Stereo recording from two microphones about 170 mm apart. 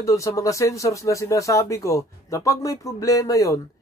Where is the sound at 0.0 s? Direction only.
20° left (ahead or behind).